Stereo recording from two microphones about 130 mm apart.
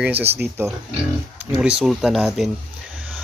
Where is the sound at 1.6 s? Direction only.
5° right (ahead or behind).